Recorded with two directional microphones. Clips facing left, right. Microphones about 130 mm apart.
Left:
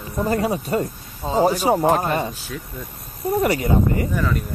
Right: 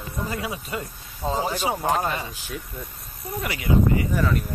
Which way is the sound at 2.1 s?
45° left (ahead or behind).